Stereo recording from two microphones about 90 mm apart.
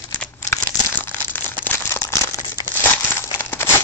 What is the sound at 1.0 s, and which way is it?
Crumpling, 25° left (ahead or behind).